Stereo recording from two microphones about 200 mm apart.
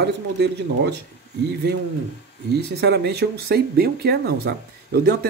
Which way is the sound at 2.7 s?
55° right (ahead or behind).